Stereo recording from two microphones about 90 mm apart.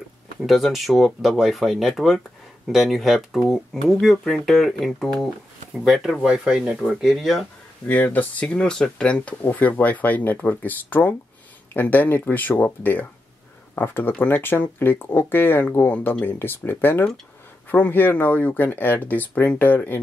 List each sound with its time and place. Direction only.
0.5 s speech: centre (ahead or behind)
7.8 s speech: 20° left (ahead or behind)